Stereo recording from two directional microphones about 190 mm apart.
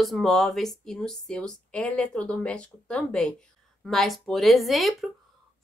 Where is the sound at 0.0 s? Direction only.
Centre (ahead or behind).